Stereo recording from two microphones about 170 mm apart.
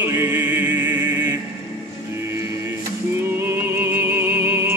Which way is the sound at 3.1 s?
15° right (ahead or behind).